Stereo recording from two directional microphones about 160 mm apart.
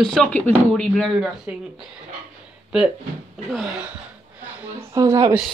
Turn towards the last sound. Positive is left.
turn(degrees=-20)  # may be behind; listen again after turning